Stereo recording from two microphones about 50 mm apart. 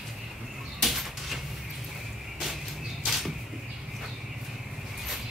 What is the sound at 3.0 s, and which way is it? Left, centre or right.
Arrow, centre.